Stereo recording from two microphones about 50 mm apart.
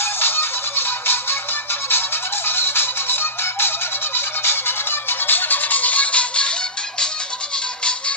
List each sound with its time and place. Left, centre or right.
0.0 s music: left